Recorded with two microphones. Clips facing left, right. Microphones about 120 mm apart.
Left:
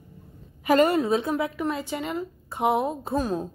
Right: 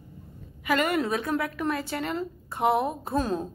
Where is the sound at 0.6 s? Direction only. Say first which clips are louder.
Left 5 dB; 35° left (ahead or behind).